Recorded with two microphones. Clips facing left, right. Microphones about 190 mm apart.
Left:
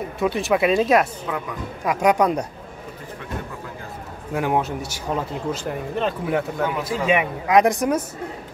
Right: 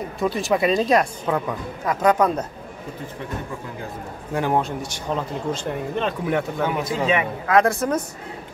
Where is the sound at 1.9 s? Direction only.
15° left (ahead or behind).